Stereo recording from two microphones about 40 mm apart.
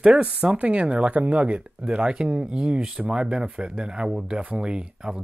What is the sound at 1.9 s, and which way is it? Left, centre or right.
Speech, right.